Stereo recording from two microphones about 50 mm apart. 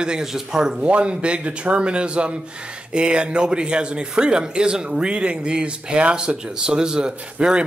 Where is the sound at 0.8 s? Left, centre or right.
Right.